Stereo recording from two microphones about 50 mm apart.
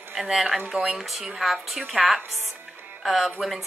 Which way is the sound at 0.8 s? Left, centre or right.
Centre.